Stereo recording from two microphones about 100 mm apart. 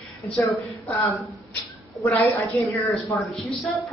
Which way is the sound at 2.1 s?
35° left (ahead or behind).